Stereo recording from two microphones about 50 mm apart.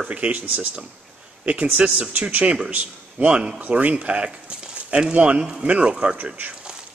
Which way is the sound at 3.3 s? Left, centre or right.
Centre.